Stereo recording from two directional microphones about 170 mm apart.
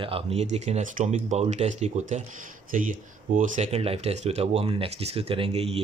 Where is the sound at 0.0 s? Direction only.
35° right (ahead or behind).